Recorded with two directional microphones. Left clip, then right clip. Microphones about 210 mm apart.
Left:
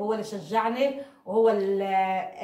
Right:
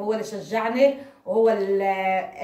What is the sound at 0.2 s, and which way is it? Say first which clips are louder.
Speech: right 1 dB; 15° left (ahead or behind).